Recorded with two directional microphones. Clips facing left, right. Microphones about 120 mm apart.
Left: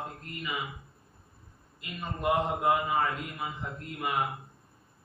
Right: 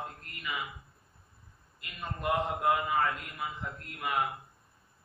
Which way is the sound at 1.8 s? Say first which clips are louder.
Left 3 dB; 15° left (ahead or behind).